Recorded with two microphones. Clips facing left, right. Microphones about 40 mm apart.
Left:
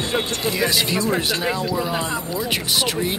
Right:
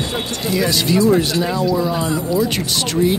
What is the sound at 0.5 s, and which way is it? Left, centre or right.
Speech, centre.